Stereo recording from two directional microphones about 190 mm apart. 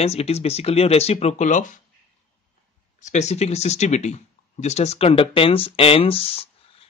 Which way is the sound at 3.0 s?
35° left (ahead or behind).